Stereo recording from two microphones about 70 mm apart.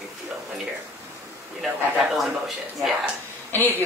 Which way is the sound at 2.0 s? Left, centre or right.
Centre.